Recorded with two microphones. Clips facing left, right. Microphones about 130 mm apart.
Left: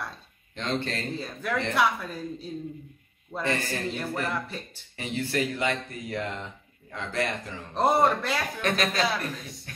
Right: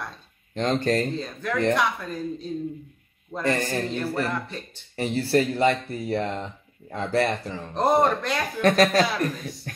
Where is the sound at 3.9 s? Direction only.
10° left (ahead or behind).